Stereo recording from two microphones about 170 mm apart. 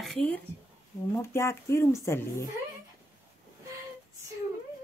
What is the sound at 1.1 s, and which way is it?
Speech, 15° left (ahead or behind).